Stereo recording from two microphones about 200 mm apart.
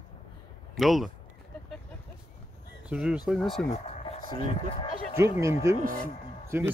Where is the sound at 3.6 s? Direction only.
30° left (ahead or behind).